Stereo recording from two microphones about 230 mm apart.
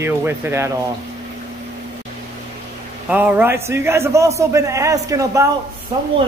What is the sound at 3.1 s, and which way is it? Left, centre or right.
A man's voice, centre.